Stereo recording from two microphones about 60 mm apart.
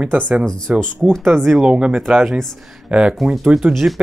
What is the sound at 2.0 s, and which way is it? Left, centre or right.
Speech, centre.